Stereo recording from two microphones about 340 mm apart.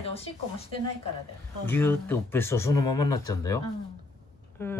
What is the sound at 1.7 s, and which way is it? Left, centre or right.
A woman's voice, centre.